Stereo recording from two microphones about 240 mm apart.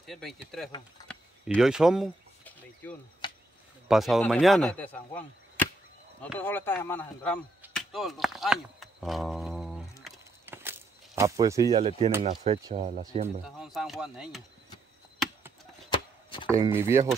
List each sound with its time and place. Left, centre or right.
0.0 s arrow: centre
1.0 s a sound: centre
3.9 s arrow: centre
6.2 s speech: centre
7.6 s chop: centre
10.0 s walk: centre
12.2 s speech: centre
12.7 s speech: right
13.6 s arrow: centre
15.9 s chopping: centre
16.4 s speech: centre